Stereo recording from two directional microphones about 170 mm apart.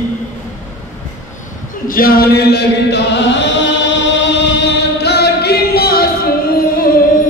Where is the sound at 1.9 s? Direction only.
60° left (ahead or behind).